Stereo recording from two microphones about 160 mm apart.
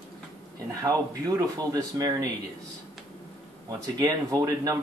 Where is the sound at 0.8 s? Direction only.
20° right (ahead or behind).